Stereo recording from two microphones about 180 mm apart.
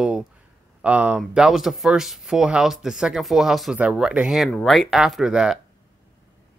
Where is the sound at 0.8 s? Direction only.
5° right (ahead or behind).